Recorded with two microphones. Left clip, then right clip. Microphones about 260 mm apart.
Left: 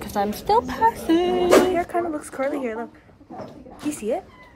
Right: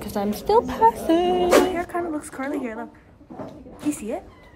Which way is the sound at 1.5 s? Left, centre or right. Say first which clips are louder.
Left 2 dB; centre.